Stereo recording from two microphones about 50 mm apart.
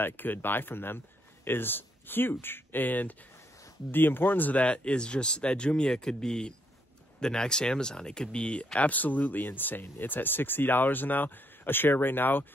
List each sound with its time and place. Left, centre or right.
0.0 s speech: left
8.7 s speech: left